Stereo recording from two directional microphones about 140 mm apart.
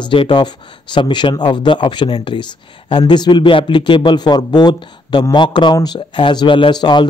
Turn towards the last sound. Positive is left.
turn(degrees=30)  # may be behind; listen again after turning